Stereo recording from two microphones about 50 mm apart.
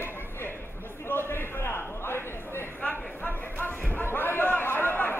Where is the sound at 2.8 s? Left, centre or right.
Left.